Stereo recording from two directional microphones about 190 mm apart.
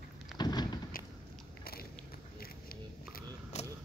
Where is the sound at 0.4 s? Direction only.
20° left (ahead or behind).